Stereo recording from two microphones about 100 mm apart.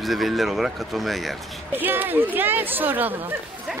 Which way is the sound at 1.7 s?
20° right (ahead or behind).